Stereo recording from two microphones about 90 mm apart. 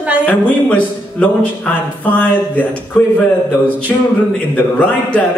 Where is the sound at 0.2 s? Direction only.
20° left (ahead or behind).